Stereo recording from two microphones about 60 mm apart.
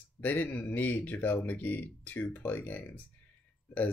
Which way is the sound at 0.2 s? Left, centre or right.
Left.